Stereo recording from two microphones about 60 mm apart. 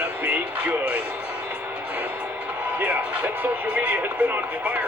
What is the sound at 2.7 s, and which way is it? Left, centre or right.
Speech, right.